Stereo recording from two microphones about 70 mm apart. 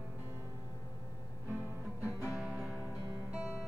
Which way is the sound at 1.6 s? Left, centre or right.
Left.